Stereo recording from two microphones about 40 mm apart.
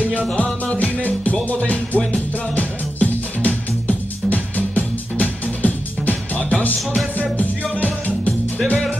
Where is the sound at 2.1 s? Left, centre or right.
Left.